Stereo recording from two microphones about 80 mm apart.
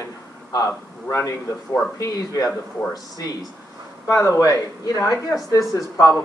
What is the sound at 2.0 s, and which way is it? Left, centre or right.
Speech, left.